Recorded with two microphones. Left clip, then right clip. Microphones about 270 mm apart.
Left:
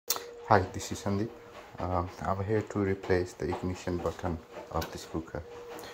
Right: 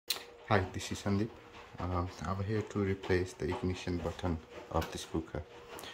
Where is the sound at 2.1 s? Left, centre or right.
Centre.